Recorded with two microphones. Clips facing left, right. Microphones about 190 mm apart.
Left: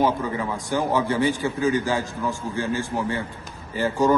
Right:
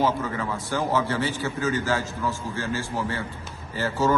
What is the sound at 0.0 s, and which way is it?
A man's voice, 15° left (ahead or behind).